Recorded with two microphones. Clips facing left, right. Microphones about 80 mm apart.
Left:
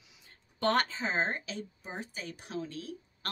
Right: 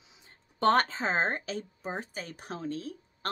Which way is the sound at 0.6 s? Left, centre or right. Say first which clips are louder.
Right 4 dB; right.